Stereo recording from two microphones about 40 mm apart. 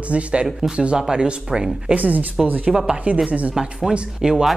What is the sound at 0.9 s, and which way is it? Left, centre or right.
Speech, centre.